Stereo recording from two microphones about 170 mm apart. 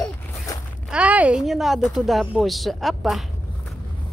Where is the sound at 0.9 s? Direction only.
10° right (ahead or behind).